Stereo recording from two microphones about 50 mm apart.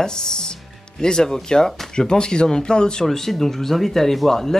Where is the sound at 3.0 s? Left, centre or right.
Centre.